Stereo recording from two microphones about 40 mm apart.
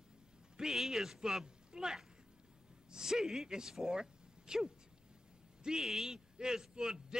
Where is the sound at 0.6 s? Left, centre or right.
Centre.